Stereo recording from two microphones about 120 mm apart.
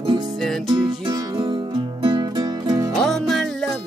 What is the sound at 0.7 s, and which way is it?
Music, 40° right (ahead or behind).